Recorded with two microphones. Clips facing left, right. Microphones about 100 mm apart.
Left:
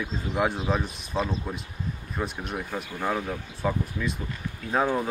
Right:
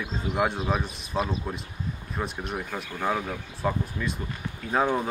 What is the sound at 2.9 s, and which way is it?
Speech, 10° right (ahead or behind).